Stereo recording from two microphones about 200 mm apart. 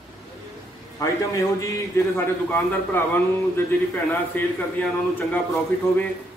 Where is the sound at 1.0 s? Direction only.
15° left (ahead or behind).